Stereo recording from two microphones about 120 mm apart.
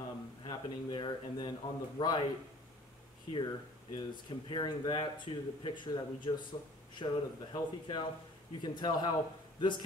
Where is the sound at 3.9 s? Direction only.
40° left (ahead or behind).